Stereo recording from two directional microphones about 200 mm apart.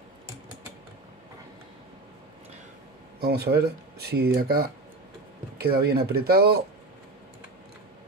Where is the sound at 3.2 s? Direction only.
50° right (ahead or behind).